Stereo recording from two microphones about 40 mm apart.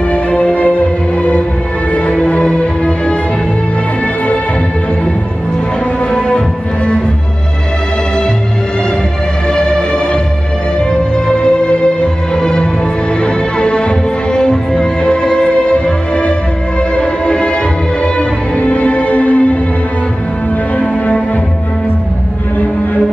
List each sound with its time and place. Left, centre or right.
0.1 s music: left
6.1 s music: left
9.5 s music: left
20.8 s music: left